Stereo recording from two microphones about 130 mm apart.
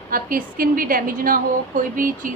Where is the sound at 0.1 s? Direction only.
90° right.